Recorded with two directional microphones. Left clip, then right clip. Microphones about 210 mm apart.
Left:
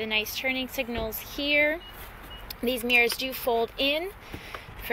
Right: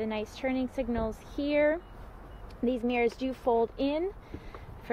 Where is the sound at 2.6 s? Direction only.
10° right (ahead or behind).